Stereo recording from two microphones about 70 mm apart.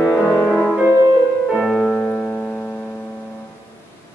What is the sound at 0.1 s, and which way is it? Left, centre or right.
Music, centre.